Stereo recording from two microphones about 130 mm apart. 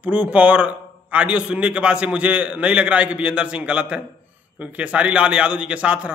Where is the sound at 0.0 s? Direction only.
10° right (ahead or behind).